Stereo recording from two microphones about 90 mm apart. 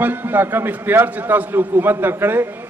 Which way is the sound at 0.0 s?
20° right (ahead or behind).